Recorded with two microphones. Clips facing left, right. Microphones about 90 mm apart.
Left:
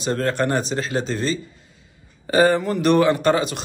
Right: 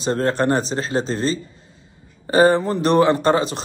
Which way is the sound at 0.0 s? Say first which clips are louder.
Right 2 dB; 30° right (ahead or behind).